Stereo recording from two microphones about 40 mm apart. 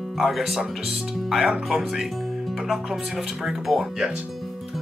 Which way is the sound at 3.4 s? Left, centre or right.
Centre.